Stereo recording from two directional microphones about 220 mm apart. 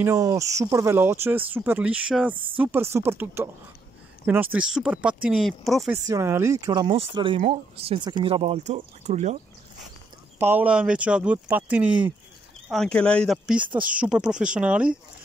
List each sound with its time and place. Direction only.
0.0 s speech: 15° right (ahead or behind)
6.0 s speech: 15° right (ahead or behind); by 9.4 s 30° right (ahead or behind)
10.4 s speech: 10° right (ahead or behind)